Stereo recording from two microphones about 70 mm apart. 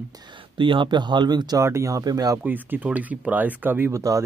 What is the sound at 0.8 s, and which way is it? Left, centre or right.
Speech, right.